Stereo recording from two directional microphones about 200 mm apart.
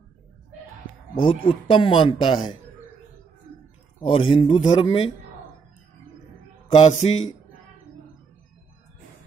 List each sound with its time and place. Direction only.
1.1 s speech: 25° left (ahead or behind)
4.0 s speech: 25° left (ahead or behind)
6.8 s speech: 35° left (ahead or behind)